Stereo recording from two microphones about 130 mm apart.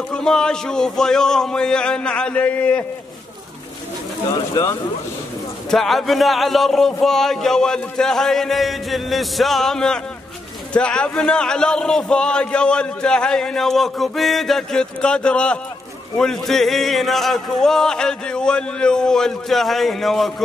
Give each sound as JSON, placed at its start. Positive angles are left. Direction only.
{"t": 0.1, "sound": "speech", "side_deg": 5}
{"t": 4.3, "sound": "speech", "side_deg": 30}
{"t": 5.7, "sound": "a man's voice", "side_deg": 0}